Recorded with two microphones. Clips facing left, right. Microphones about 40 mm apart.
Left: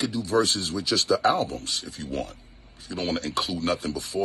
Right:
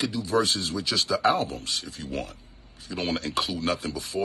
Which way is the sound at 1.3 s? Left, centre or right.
Right.